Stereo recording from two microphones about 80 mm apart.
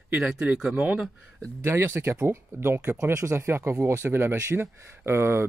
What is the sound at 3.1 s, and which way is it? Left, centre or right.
Speech, right.